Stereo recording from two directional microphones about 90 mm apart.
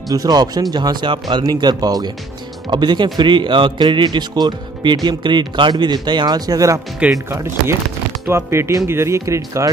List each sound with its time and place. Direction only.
0.1 s a man's voice: 45° right (ahead or behind)
7.2 s speech: 30° right (ahead or behind)